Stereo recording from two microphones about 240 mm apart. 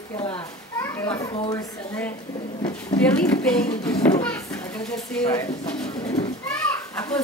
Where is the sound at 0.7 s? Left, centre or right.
Centre.